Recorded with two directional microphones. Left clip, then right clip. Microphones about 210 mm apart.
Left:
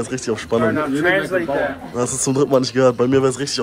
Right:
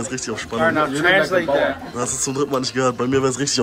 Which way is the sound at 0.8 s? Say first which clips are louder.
Right 2 dB; 50° right (ahead or behind).